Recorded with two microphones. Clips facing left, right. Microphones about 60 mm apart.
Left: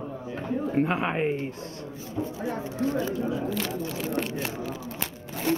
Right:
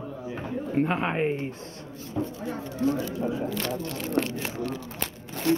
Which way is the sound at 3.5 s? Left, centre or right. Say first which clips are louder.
Even; centre.